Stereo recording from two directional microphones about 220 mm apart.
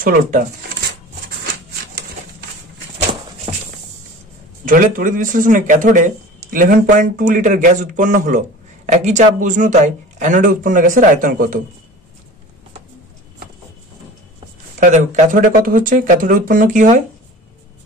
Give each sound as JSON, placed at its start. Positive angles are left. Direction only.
{"t": 0.0, "sound": "speech", "side_deg": -35}
{"t": 4.6, "sound": "speech", "side_deg": -40}
{"t": 14.8, "sound": "speech", "side_deg": -35}